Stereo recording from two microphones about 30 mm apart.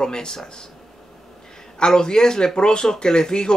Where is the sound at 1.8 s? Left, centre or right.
Left.